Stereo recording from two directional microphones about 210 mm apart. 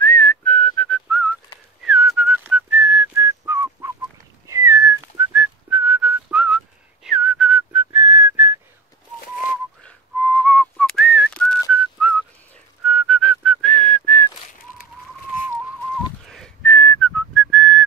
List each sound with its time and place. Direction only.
0.0 s whistling: 10° left (ahead or behind); by 8.5 s 10° right (ahead or behind)
9.8 s whistling: 5° left (ahead or behind)
16.3 s whistling: centre (ahead or behind)